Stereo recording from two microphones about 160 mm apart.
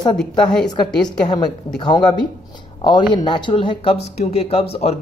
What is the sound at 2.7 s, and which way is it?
Speech, 30° left (ahead or behind).